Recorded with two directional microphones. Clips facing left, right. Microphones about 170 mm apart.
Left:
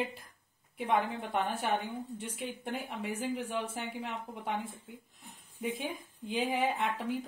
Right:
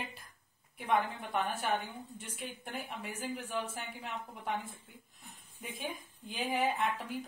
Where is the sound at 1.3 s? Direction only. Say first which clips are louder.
Left 1 dB; 25° left (ahead or behind).